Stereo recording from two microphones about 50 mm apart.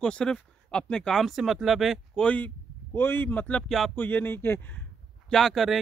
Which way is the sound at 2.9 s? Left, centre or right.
Left.